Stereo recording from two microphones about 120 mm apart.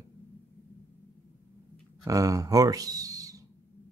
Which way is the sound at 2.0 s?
30° right (ahead or behind).